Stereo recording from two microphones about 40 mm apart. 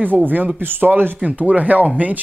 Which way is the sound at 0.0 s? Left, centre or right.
Right.